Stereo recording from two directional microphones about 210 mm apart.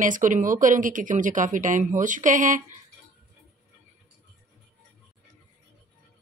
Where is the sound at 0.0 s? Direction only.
40° right (ahead or behind).